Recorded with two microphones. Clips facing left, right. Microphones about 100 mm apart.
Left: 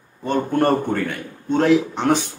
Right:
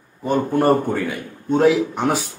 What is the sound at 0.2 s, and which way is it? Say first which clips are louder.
A man's voice: right 1 dB; 10° right (ahead or behind).